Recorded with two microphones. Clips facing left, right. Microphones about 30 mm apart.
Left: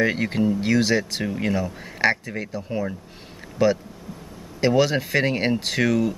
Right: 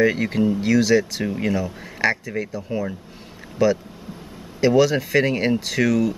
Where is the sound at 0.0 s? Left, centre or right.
Centre.